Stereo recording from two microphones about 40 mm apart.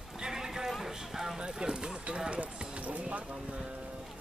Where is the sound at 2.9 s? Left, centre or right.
Right.